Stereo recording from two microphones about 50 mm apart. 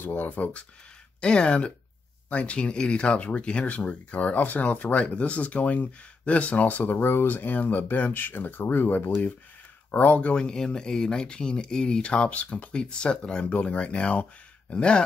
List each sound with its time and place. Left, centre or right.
0.0 s speech: left
1.2 s speech: centre; by 9.1 s left
9.8 s speech: left